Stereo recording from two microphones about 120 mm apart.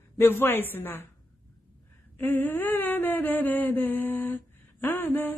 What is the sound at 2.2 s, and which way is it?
A woman's voice, 15° left (ahead or behind).